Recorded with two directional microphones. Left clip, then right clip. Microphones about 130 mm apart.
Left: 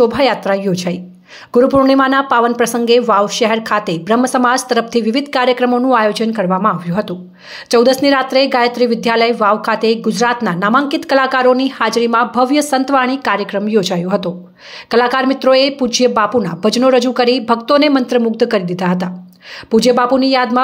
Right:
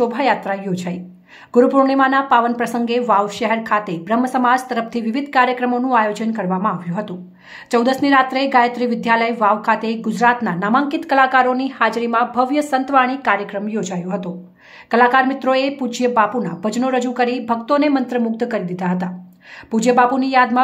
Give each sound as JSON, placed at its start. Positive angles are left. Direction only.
{"t": 0.0, "sound": "a woman's voice", "side_deg": 25}